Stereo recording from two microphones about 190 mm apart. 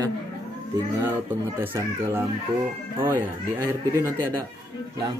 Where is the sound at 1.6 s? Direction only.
10° right (ahead or behind).